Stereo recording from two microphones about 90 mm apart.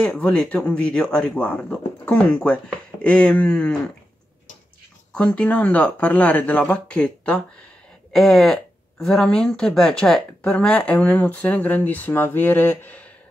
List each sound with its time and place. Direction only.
0.0 s speech: 15° left (ahead or behind)
5.1 s speech: 10° left (ahead or behind)